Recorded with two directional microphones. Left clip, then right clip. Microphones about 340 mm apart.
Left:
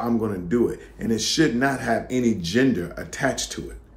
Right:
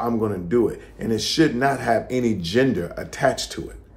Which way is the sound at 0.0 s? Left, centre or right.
Centre.